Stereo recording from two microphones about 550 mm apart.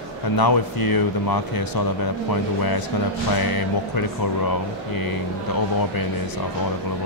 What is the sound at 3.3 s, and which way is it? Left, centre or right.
Speech, left.